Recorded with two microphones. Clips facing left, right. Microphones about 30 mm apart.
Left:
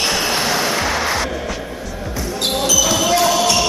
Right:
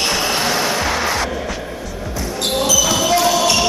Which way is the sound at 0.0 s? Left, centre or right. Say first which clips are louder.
Even; centre.